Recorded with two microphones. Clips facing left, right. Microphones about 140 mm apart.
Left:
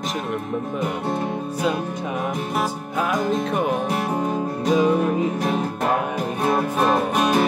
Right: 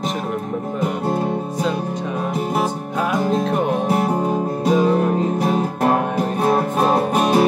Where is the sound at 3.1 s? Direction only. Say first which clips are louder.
Right 3 dB; 5° right (ahead or behind).